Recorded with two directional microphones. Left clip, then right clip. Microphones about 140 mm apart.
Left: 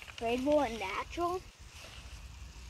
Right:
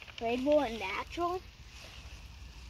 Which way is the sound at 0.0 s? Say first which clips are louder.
Even; 60° right (ahead or behind).